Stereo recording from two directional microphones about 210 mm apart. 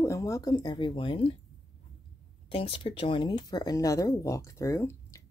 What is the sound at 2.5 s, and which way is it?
Speech, 25° left (ahead or behind).